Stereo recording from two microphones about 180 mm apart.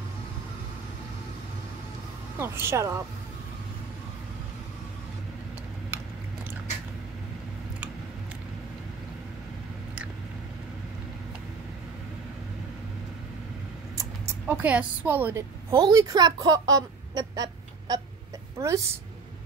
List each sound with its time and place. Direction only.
2.3 s a woman's voice: 15° right (ahead or behind)
14.5 s a woman's voice: 10° right (ahead or behind)